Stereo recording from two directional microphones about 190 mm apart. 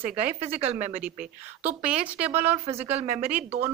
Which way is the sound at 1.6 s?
5° right (ahead or behind).